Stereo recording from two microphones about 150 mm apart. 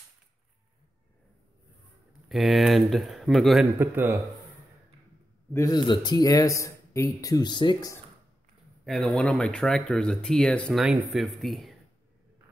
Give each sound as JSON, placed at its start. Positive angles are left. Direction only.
{"t": 2.2, "sound": "speech", "side_deg": 0}
{"t": 3.7, "sound": "speech", "side_deg": -15}
{"t": 5.5, "sound": "speech", "side_deg": 20}
{"t": 8.8, "sound": "speech", "side_deg": 0}